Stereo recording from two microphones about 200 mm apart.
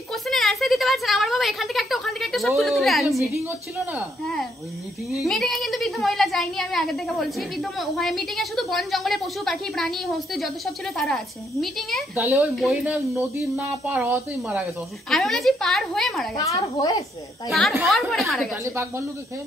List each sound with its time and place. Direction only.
0.1 s a sound: centre (ahead or behind)
3.3 s speech: 5° right (ahead or behind)
5.1 s a woman's voice: centre (ahead or behind)
12.2 s a woman's voice: 10° right (ahead or behind)
16.3 s speech: 20° left (ahead or behind)
17.5 s a woman's voice: centre (ahead or behind)
18.6 s speech: 15° right (ahead or behind)